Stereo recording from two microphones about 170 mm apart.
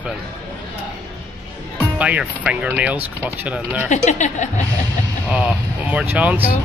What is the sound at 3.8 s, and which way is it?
Speech, 45° left (ahead or behind).